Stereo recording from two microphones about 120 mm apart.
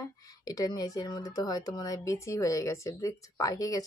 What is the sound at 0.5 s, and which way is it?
Speech, 30° left (ahead or behind).